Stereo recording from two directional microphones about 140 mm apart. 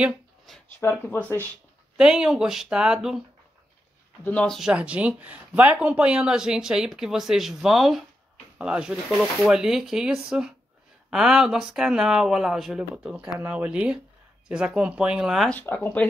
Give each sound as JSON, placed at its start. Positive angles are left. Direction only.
{"t": 0.7, "sound": "speech", "side_deg": 15}
{"t": 2.0, "sound": "speech", "side_deg": -5}
{"t": 4.2, "sound": "speech", "side_deg": 10}
{"t": 15.5, "sound": "speech", "side_deg": 10}